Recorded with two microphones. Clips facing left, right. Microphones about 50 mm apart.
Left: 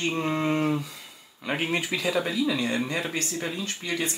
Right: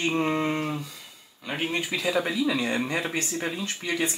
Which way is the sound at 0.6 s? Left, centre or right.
Centre.